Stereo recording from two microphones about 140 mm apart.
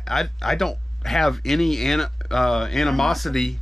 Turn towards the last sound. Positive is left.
turn(degrees=0)  # may be behind; listen again after turning